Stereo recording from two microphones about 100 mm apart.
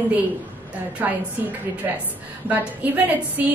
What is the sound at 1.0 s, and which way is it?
A woman's voice, 15° right (ahead or behind).